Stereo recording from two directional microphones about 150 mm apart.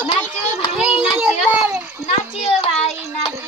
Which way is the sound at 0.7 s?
5° right (ahead or behind).